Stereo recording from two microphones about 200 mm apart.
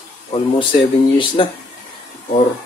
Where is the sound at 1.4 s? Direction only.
25° left (ahead or behind).